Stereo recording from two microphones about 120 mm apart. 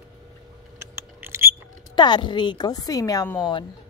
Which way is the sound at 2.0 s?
40° left (ahead or behind).